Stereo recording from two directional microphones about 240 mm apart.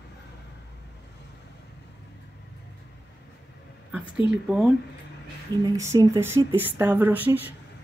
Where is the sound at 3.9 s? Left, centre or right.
Centre.